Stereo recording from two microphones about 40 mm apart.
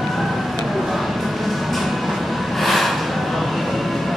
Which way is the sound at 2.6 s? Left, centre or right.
Centre.